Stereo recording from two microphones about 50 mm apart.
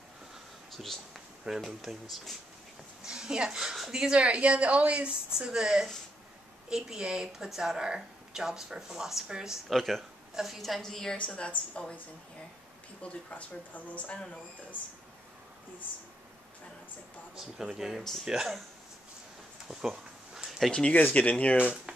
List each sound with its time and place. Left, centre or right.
0.7 s a sound: centre
1.4 s speech: centre
3.0 s speech: centre
9.7 s a woman's voice: centre
10.8 s a woman's voice: centre
11.1 s speech: left
13.3 s speech: left
17.7 s speech: centre
20.3 s a sound: centre
20.9 s speech: left